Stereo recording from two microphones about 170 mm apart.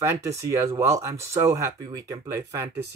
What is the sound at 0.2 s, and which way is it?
Speech, 20° right (ahead or behind).